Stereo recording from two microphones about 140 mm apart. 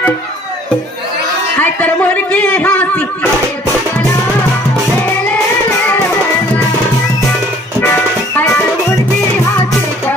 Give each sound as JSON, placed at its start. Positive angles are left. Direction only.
{"t": 1.6, "sound": "a sound", "side_deg": 10}
{"t": 5.9, "sound": "music", "side_deg": 15}
{"t": 7.8, "sound": "music", "side_deg": 15}